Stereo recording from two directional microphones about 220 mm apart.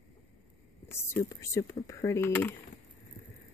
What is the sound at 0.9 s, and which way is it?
Speech, 10° left (ahead or behind).